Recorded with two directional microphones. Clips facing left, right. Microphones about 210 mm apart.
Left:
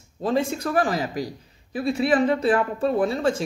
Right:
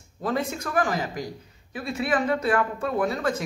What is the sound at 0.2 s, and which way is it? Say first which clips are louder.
A woman's voice: left 4 dB; 25° left (ahead or behind).